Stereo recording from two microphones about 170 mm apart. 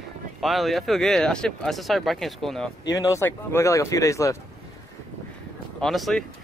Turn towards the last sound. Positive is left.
turn(degrees=0)  # may be behind; listen again after turning